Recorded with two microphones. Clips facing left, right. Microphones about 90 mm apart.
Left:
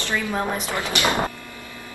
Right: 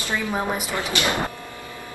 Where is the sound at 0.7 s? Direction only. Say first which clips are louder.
Left 1 dB; 20° left (ahead or behind).